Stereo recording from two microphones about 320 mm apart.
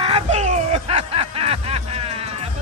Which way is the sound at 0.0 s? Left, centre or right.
Centre.